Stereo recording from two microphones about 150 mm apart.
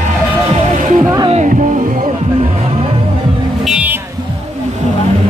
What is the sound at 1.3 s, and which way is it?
Music, 50° right (ahead or behind).